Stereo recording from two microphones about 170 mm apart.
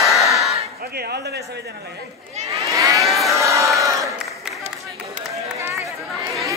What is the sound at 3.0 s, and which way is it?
Choir, centre (ahead or behind).